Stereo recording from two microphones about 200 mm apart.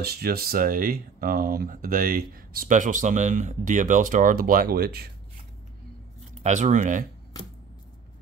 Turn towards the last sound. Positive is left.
turn(degrees=-40)  # may be behind; listen again after turning